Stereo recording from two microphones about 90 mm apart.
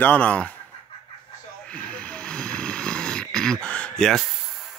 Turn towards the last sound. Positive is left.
turn(degrees=5)  # may be behind; listen again after turning